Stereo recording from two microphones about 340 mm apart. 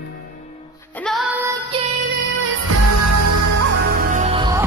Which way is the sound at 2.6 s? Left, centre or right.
Right.